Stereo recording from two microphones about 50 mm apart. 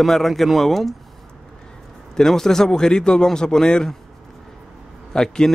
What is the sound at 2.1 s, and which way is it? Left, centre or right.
A man's voice, centre.